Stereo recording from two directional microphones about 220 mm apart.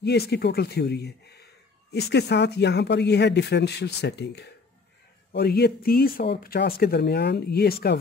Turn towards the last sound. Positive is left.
turn(degrees=45)  # may be behind; listen again after turning